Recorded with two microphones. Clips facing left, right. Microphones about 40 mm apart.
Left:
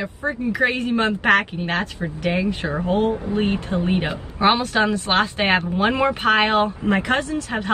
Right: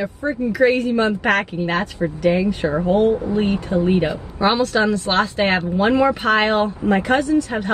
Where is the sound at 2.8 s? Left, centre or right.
Left.